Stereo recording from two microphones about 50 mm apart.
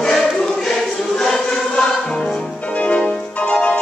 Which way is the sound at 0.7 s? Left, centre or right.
Centre.